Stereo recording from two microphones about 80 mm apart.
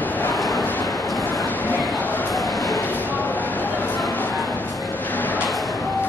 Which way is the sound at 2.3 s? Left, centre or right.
Centre.